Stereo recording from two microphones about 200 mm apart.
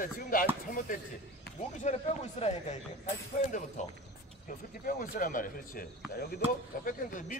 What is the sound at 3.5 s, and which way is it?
Speech, 35° left (ahead or behind).